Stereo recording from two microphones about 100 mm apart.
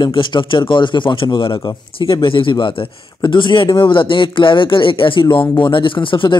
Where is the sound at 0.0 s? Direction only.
50° left (ahead or behind).